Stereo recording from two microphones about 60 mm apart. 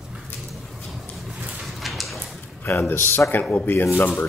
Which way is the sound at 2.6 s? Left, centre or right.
Left.